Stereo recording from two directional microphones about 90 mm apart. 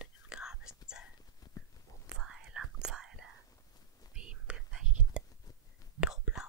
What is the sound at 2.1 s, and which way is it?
Whispering, 5° right (ahead or behind).